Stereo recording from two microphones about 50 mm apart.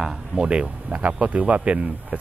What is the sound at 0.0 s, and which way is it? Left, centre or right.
Speech, centre.